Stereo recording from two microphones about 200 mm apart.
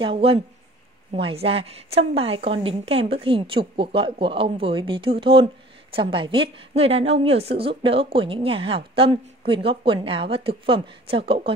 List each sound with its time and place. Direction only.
0.0 s a woman's voice: 30° right (ahead or behind)